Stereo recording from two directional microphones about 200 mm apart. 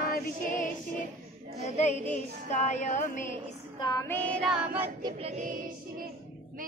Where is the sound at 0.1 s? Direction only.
40° left (ahead or behind).